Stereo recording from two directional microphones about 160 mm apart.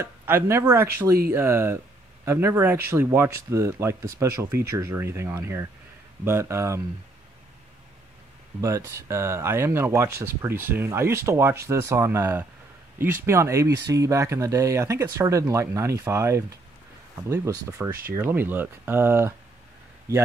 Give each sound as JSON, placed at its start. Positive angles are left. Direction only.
{"t": 0.0, "sound": "speech", "side_deg": -15}
{"t": 8.5, "sound": "speech", "side_deg": -15}